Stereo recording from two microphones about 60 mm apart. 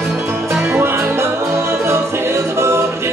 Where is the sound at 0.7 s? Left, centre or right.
Right.